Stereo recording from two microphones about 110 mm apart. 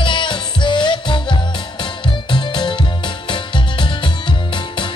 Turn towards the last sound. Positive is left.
turn(degrees=45)  # may be behind; listen again after turning